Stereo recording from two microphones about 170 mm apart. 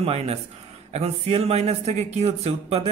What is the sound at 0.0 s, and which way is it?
Speech, 35° right (ahead or behind).